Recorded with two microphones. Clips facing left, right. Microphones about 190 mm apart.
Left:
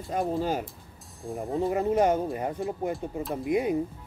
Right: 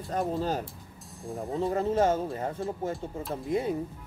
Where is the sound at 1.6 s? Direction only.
15° left (ahead or behind).